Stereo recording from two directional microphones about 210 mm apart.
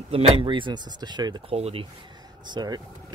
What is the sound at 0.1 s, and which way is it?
Speech, 25° right (ahead or behind).